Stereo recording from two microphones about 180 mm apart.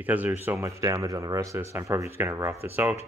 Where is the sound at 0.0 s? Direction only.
10° right (ahead or behind).